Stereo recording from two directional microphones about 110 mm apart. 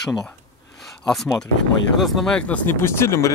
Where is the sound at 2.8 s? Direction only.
25° left (ahead or behind).